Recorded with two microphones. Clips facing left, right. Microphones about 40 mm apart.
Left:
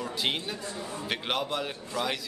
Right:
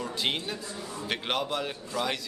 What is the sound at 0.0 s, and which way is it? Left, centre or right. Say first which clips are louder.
Speech: even; centre.